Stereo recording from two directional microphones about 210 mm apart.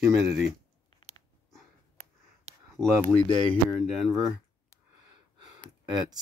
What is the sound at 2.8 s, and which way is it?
Speech, 5° left (ahead or behind).